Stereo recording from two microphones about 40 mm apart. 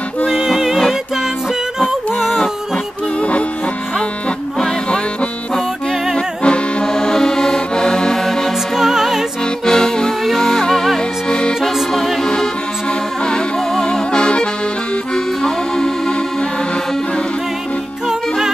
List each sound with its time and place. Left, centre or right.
0.3 s music: centre
3.2 s music: left
6.1 s music: left
8.7 s music: centre
9.7 s music: centre
11.2 s accordion: left
11.6 s music: centre
13.2 s accordion: left
15.1 s music: centre